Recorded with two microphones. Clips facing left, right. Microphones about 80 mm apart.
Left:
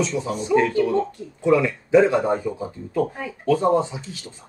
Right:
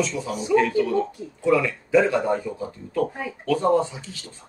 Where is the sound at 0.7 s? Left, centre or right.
Centre.